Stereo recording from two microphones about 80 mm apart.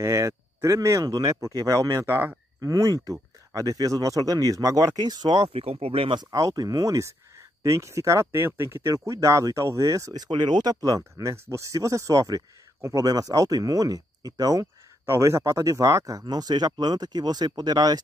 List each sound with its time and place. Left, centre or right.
0.0 s speech: right
2.6 s speech: right
6.3 s speech: right
15.0 s speech: right